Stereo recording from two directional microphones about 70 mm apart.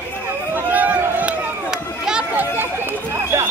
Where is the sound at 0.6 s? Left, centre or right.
Right.